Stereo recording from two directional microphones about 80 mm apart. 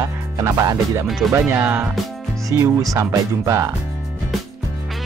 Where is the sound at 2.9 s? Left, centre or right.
Right.